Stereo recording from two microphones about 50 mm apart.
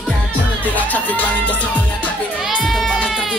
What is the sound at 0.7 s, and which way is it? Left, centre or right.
Music, left.